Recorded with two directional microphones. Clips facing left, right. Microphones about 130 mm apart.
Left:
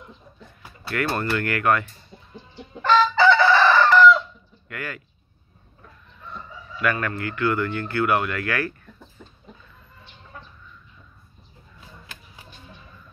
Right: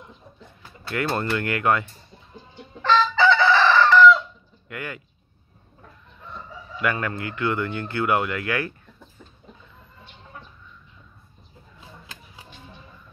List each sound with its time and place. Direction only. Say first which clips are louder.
0.8 s speech: even; 20° right (ahead or behind)
2.8 s chicken: left 2 dB; 5° left (ahead or behind)
4.6 s speech: even; 20° right (ahead or behind)
6.8 s speech: left 1 dB; 20° right (ahead or behind)